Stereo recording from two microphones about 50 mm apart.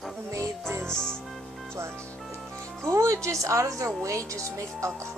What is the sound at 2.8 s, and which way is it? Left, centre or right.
Speech, right.